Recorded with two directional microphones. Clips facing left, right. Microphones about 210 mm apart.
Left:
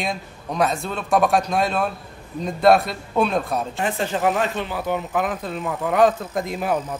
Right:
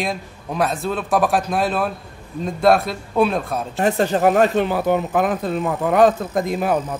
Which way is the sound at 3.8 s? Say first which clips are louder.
Right 7 dB; 40° right (ahead or behind).